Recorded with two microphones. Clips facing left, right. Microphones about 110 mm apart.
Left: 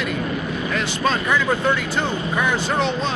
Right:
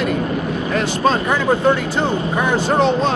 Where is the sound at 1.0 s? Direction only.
35° right (ahead or behind).